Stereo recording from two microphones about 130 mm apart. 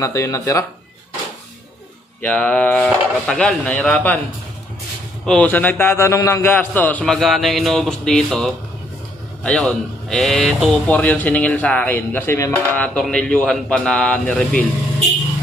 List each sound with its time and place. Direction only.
0.0 s speech: 25° left (ahead or behind)
2.2 s a man's voice: 10° left (ahead or behind)
5.2 s a man's voice: 10° left (ahead or behind)
10.9 s a man's voice: 10° left (ahead or behind)